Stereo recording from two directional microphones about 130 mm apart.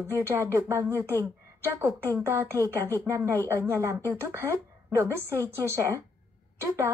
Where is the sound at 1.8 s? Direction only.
20° right (ahead or behind).